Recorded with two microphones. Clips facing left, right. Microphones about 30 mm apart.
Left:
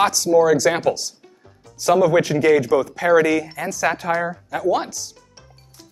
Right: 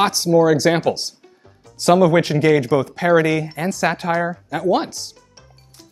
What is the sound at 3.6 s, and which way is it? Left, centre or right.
Speech, right.